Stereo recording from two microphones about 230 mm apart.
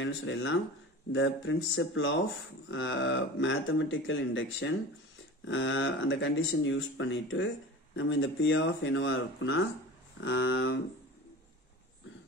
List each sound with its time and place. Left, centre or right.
0.0 s speech: left